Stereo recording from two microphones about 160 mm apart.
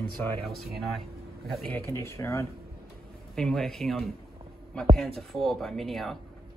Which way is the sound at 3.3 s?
5° left (ahead or behind).